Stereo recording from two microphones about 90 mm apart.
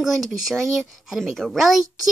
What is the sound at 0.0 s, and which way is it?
Speech, centre (ahead or behind).